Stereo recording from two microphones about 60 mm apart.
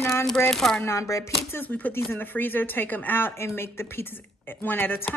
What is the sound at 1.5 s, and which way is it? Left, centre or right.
A woman's voice, left.